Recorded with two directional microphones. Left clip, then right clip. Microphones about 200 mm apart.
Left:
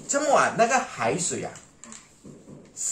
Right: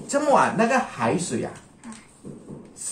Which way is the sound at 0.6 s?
10° right (ahead or behind).